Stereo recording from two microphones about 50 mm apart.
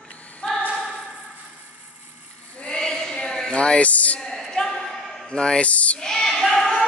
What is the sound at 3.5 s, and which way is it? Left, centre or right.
Music, left.